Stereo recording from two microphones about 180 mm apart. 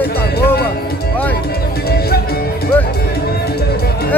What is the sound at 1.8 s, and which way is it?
Music, 60° left (ahead or behind).